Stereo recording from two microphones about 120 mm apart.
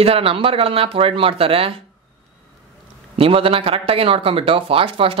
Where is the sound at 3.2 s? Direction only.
50° right (ahead or behind).